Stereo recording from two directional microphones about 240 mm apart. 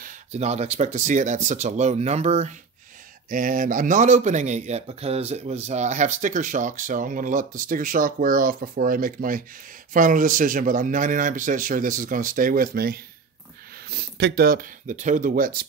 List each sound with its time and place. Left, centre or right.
0.0 s speech: right